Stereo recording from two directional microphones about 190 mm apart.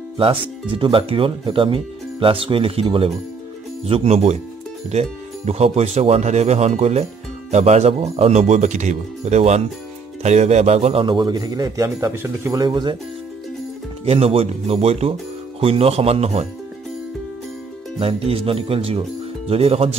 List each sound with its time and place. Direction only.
0.2 s speech: 25° right (ahead or behind)
14.0 s speech: 30° right (ahead or behind)
17.9 s speech: 30° right (ahead or behind)